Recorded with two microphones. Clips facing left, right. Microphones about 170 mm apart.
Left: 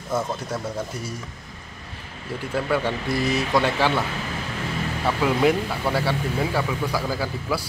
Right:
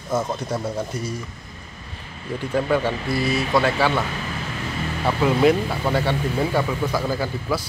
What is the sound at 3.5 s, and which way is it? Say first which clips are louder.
Speech: right 2 dB; 5° right (ahead or behind).